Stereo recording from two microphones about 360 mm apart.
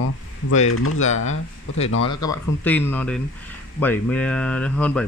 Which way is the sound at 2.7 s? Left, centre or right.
Centre.